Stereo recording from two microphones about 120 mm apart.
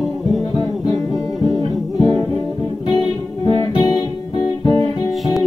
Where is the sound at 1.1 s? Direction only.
Centre (ahead or behind).